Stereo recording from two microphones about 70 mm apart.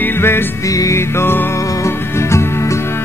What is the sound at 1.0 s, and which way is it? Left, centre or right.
Music, left.